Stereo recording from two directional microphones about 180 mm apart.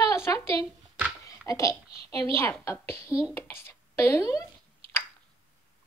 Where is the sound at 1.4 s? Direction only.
15° left (ahead or behind).